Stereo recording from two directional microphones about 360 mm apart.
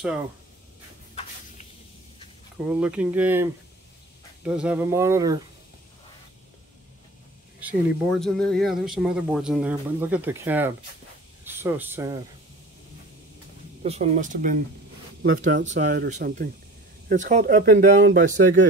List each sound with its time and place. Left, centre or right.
2.5 s speech: centre
4.5 s speech: centre
7.6 s speech: centre
13.8 s speech: centre